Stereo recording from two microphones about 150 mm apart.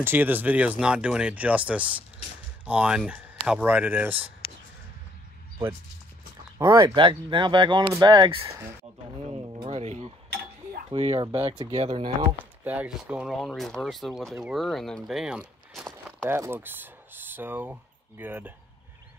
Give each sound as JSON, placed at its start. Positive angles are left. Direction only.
{"t": 0.0, "sound": "speech", "side_deg": -15}
{"t": 4.4, "sound": "a sound", "side_deg": 40}
{"t": 6.6, "sound": "speech", "side_deg": -20}
{"t": 9.5, "sound": "a sound", "side_deg": -30}
{"t": 9.8, "sound": "cutlery", "side_deg": -50}
{"t": 10.9, "sound": "speech", "side_deg": -40}
{"t": 12.2, "sound": "speech", "side_deg": -10}
{"t": 16.3, "sound": "speech", "side_deg": -15}